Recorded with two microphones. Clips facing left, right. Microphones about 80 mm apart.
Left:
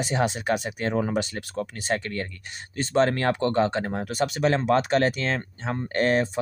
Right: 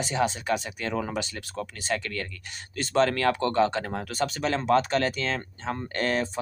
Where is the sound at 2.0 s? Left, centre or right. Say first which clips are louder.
Left 2 dB; left.